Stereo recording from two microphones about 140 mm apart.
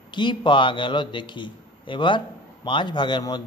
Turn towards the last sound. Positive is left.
turn(degrees=30)  # may be behind; listen again after turning